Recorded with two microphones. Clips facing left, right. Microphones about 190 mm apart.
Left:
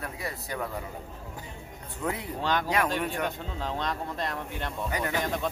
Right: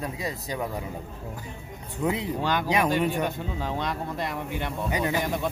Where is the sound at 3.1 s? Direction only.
5° right (ahead or behind).